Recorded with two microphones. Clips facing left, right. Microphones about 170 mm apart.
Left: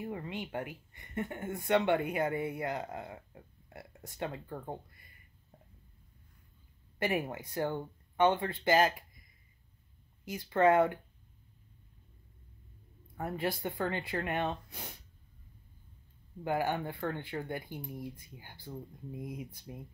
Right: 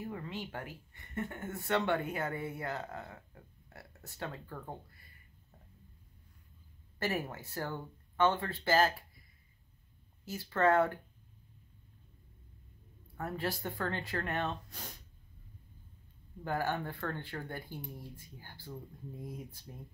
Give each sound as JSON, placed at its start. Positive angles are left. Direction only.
{"t": 0.4, "sound": "speech", "side_deg": 10}
{"t": 7.0, "sound": "speech", "side_deg": 15}
{"t": 10.2, "sound": "speech", "side_deg": 15}
{"t": 13.2, "sound": "speech", "side_deg": 15}
{"t": 16.4, "sound": "speech", "side_deg": 15}